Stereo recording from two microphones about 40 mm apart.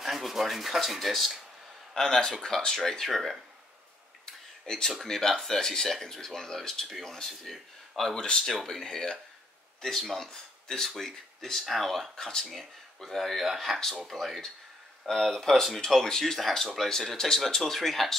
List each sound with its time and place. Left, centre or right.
0.0 s speech: centre
2.0 s speech: centre
3.1 s speech: centre
4.3 s a sound: centre
5.0 s speech: centre
11.6 s speech: centre
11.9 s speech: centre
16.3 s speech: centre